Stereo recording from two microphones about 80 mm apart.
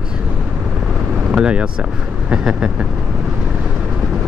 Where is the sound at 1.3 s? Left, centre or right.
Centre.